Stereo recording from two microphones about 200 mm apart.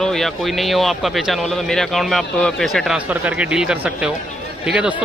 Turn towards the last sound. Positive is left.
turn(degrees=-5)  # may be behind; listen again after turning